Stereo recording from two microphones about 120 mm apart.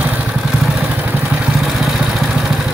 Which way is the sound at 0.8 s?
15° right (ahead or behind).